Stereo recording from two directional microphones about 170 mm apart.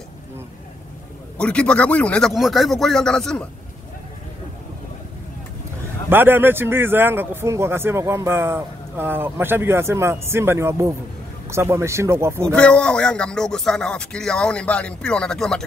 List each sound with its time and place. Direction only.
1.4 s speech: 5° left (ahead or behind)
6.0 s speech: 10° right (ahead or behind)
12.5 s speech: 5° left (ahead or behind)